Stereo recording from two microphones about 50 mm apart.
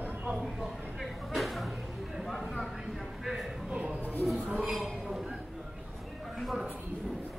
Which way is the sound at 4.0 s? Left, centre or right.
Left.